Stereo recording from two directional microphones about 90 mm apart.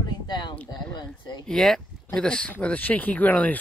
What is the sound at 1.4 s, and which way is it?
Speech, 5° left (ahead or behind).